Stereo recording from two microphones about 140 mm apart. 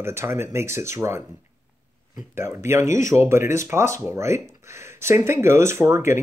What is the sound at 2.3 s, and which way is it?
Speech, 20° right (ahead or behind).